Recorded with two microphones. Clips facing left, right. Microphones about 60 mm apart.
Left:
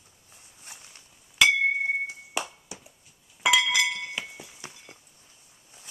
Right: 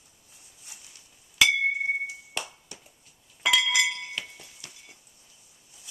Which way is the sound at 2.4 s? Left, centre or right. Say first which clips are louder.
Left 6 dB; centre.